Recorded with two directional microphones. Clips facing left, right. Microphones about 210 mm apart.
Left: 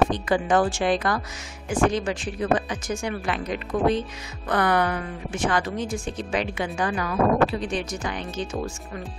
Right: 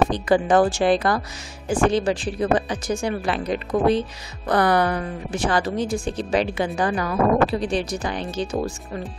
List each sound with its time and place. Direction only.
0.1 s a woman's voice: 35° right (ahead or behind)